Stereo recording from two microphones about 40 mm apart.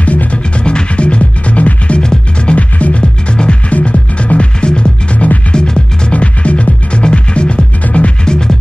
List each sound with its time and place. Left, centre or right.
0.0 s music: left
2.0 s music: left
6.1 s music: left
8.3 s music: centre